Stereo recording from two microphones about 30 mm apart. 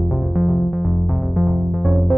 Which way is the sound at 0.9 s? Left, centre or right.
Centre.